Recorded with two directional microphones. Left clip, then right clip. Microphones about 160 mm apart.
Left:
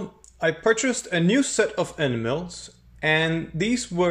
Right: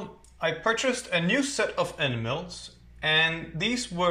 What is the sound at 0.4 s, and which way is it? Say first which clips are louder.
Speech: left 5 dB; 45° left (ahead or behind).